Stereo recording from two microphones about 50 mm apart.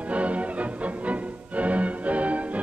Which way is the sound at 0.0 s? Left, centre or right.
Right.